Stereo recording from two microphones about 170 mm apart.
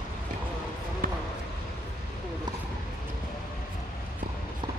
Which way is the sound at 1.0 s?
55° right (ahead or behind).